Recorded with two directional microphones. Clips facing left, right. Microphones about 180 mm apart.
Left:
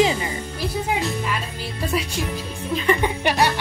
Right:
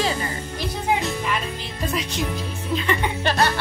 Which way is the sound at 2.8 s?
15° left (ahead or behind).